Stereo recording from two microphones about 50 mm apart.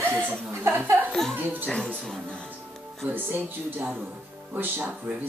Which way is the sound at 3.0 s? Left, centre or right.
Right.